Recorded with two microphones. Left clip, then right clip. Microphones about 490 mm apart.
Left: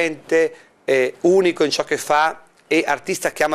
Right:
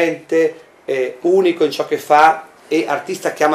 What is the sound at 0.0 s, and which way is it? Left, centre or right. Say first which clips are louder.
Speech: right 3 dB; left.